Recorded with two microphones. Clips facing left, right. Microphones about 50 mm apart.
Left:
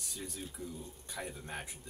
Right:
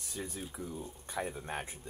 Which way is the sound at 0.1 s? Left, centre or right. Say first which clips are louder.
Right 4 dB; right.